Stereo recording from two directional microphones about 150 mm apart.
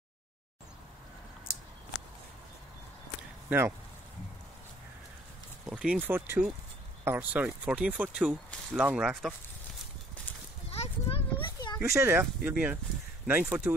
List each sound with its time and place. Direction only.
3.4 s speech: 15° right (ahead or behind)
5.7 s speech: 5° right (ahead or behind)
10.7 s a sound: 40° left (ahead or behind)
11.8 s speech: 15° right (ahead or behind)